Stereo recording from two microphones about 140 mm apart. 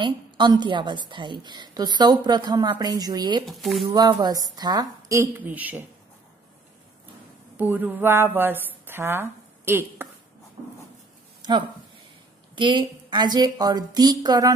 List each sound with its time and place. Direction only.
0.0 s a woman's voice: 35° right (ahead or behind)
3.4 s speech: centre (ahead or behind)
3.9 s a woman's voice: 30° right (ahead or behind)
5.5 s a sound: 10° right (ahead or behind)
7.5 s a sound: 15° right (ahead or behind)
8.8 s speech: 15° right (ahead or behind)
12.5 s a woman's voice: 35° right (ahead or behind)